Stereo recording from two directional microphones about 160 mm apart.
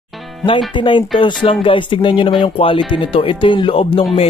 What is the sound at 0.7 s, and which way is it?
Speech, 30° left (ahead or behind).